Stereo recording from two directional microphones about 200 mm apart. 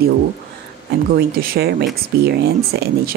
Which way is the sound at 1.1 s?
50° right (ahead or behind).